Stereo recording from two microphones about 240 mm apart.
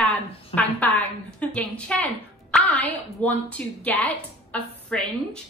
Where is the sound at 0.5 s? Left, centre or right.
Centre.